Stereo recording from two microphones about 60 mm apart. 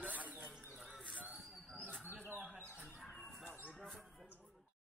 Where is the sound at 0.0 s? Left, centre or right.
Right.